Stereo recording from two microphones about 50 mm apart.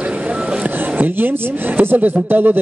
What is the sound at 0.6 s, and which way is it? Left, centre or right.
Speech, right.